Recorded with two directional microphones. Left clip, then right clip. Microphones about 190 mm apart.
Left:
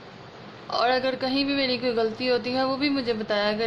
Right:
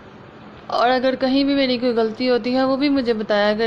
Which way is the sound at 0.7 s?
20° right (ahead or behind).